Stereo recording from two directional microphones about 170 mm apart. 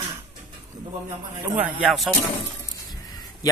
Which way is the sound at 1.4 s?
5° right (ahead or behind).